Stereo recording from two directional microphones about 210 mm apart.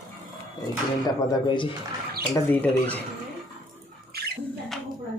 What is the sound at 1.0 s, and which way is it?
Speech, 20° left (ahead or behind).